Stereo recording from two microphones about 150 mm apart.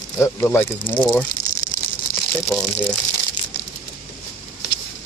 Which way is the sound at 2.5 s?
5° left (ahead or behind).